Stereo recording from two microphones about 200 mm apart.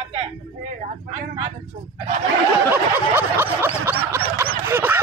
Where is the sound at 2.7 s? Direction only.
10° right (ahead or behind).